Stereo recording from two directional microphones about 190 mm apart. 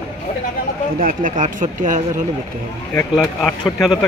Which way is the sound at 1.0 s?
45° right (ahead or behind).